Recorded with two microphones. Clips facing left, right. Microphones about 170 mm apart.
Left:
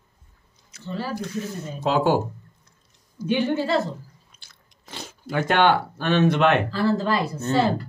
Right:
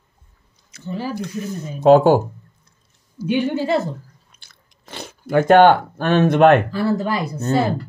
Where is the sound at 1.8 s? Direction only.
50° right (ahead or behind).